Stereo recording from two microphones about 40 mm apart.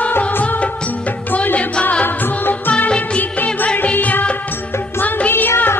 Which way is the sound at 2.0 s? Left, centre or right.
Left.